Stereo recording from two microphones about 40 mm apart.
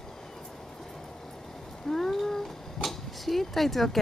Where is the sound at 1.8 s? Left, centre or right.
Centre.